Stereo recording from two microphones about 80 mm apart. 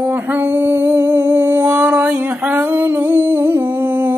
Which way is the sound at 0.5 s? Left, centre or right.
Right.